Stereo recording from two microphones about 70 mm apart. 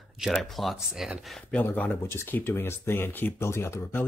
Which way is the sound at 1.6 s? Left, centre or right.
Left.